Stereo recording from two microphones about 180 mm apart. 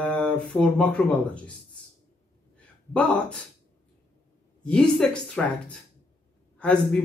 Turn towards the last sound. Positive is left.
turn(degrees=5)  # may be behind; listen again after turning